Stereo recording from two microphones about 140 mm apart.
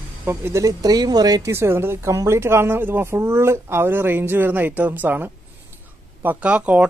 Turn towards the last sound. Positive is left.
turn(degrees=-10)  # may be behind; listen again after turning